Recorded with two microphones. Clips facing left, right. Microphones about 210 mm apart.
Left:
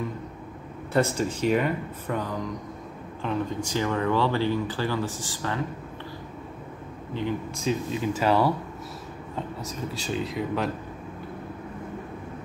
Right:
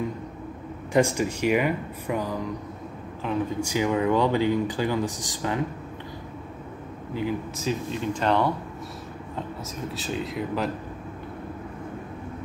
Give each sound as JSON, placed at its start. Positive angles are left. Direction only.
{"t": 0.9, "sound": "speech", "side_deg": -10}
{"t": 7.2, "sound": "speech", "side_deg": -5}
{"t": 9.8, "sound": "speech", "side_deg": 0}